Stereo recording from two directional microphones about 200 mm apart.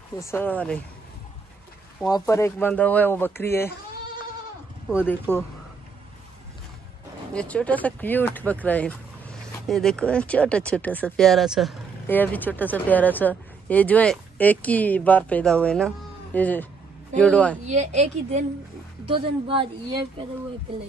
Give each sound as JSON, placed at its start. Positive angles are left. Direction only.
{"t": 0.1, "sound": "speech", "side_deg": 15}
{"t": 2.0, "sound": "speech", "side_deg": 15}
{"t": 4.9, "sound": "speech", "side_deg": 10}
{"t": 7.3, "sound": "speech", "side_deg": 5}
{"t": 12.1, "sound": "speech", "side_deg": 10}
{"t": 17.6, "sound": "a woman's voice", "side_deg": -35}